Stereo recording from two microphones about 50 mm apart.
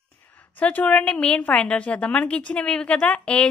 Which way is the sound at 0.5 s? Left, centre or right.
Left.